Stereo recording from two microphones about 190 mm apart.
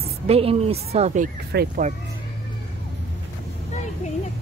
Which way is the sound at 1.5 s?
45° right (ahead or behind).